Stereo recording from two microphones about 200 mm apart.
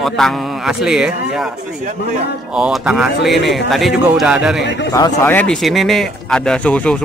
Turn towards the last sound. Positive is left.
turn(degrees=5)  # may be behind; listen again after turning